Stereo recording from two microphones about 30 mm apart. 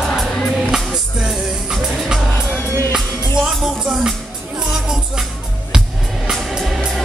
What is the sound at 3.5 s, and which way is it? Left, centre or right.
Music, centre.